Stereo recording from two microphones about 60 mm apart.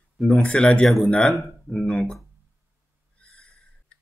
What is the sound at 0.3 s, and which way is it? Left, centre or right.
Speech, centre.